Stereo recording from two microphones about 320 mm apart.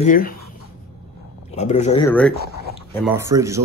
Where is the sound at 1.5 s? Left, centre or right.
Left.